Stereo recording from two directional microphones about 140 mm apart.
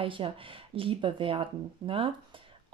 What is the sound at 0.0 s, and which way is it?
Speech, 40° right (ahead or behind).